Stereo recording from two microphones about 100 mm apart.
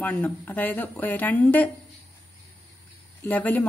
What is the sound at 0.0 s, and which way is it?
Speech, 20° left (ahead or behind).